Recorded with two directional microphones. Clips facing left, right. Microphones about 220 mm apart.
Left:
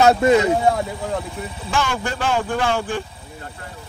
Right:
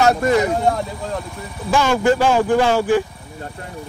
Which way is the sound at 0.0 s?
20° left (ahead or behind).